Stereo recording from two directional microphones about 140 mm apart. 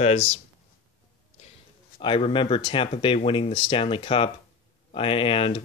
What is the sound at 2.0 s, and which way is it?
Speech, 40° left (ahead or behind).